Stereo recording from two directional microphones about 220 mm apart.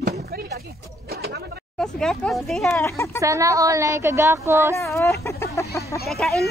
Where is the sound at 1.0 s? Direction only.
45° right (ahead or behind).